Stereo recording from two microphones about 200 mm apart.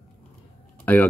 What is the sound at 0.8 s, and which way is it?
Speech, 10° left (ahead or behind).